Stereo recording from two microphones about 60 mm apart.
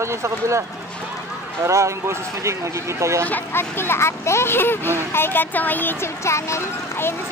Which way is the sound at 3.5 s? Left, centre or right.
Left.